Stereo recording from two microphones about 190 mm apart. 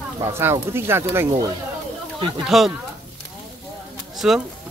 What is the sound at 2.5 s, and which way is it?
Speech, centre (ahead or behind).